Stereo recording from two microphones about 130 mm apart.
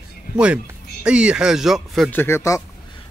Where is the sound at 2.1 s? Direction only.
15° left (ahead or behind).